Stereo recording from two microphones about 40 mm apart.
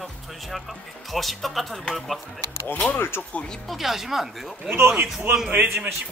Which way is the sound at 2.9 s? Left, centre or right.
Left.